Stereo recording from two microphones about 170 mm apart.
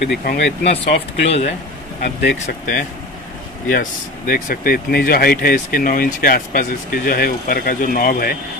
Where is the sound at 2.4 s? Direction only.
55° left (ahead or behind).